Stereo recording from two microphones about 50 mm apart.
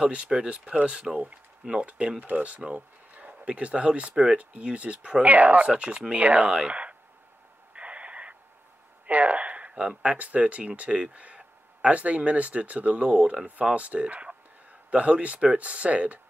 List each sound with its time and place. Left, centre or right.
0.0 s speech: right
2.1 s speech: right
6.7 s a sound: right
7.7 s owl: right
9.0 s speech: right